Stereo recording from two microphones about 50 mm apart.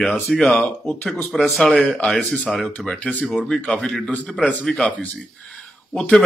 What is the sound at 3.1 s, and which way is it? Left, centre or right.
Speech, left.